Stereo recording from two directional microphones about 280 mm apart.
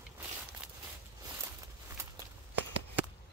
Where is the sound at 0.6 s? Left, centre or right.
Centre.